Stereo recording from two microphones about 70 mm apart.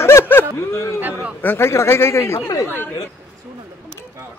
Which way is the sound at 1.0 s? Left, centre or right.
Right.